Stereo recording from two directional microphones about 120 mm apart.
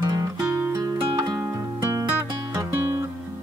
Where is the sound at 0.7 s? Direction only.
30° right (ahead or behind).